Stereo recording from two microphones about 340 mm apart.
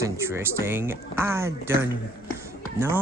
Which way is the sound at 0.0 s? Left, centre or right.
Centre.